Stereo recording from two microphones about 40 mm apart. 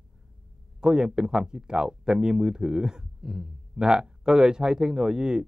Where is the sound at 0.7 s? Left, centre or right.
Centre.